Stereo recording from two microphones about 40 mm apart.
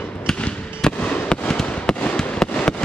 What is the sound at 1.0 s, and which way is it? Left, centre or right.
Fireworks, left.